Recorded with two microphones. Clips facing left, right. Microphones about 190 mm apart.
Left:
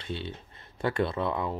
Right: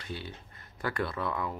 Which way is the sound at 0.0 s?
25° left (ahead or behind).